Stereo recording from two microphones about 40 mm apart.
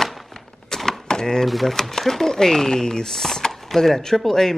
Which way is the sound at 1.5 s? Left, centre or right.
Centre.